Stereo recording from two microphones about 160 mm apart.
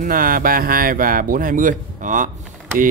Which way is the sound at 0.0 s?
65° right (ahead or behind).